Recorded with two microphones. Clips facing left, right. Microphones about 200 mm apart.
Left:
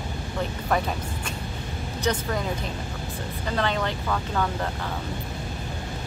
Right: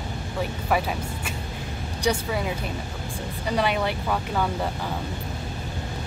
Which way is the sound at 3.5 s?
10° right (ahead or behind).